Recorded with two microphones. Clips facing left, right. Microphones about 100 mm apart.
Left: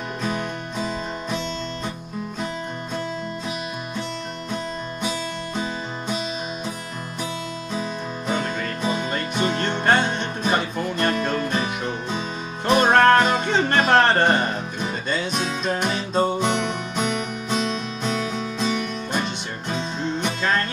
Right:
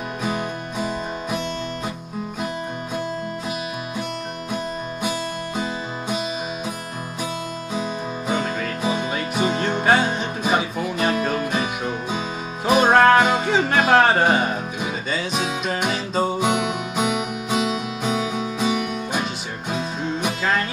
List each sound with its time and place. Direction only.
0.2 s music: 10° right (ahead or behind)
7.7 s music: 10° right (ahead or behind)